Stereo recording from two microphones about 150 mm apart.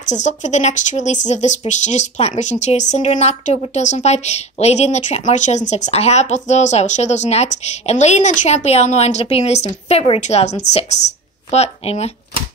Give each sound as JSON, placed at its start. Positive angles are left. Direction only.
{"t": 0.1, "sound": "speech", "side_deg": 50}